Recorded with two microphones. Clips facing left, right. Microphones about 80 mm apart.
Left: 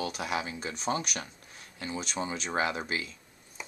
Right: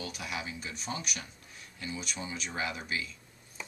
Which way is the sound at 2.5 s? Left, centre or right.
Left.